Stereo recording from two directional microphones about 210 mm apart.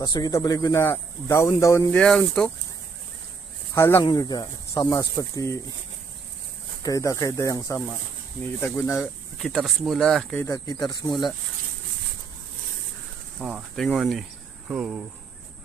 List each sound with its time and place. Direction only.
0.0 s speech: 20° left (ahead or behind); by 2.5 s 5° left (ahead or behind)
3.7 s speech: 15° left (ahead or behind)
6.8 s speech: 15° left (ahead or behind); by 10.4 s centre (ahead or behind)
10.4 s speech: 15° left (ahead or behind)
13.4 s speech: centre (ahead or behind)